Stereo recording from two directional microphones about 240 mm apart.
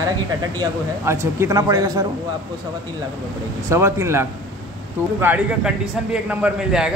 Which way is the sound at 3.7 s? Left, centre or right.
Centre.